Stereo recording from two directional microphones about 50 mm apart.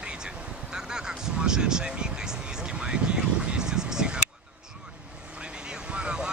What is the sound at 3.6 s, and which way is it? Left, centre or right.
Vehicle, centre.